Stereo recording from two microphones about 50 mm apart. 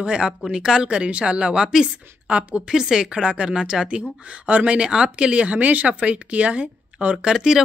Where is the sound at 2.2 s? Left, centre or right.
Right.